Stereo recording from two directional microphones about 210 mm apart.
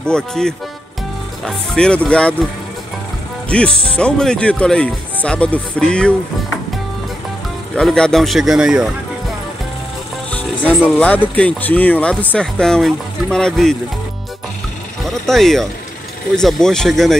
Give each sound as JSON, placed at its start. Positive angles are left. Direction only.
{"t": 0.0, "sound": "speech", "side_deg": 5}
{"t": 3.4, "sound": "speech", "side_deg": 5}
{"t": 7.7, "sound": "speech", "side_deg": 5}
{"t": 10.3, "sound": "music", "side_deg": 5}
{"t": 10.8, "sound": "speech", "side_deg": 5}
{"t": 15.0, "sound": "speech", "side_deg": 0}